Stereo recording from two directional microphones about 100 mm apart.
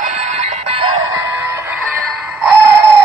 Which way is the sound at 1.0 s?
35° right (ahead or behind).